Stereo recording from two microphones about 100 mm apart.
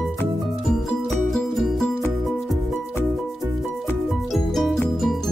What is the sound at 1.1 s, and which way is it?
Music, centre (ahead or behind).